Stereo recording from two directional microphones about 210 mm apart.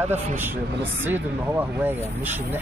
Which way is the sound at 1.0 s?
10° right (ahead or behind).